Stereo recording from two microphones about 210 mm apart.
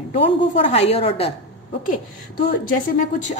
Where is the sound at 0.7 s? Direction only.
30° left (ahead or behind).